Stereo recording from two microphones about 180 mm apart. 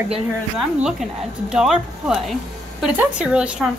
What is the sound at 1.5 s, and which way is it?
A woman's voice, 5° right (ahead or behind).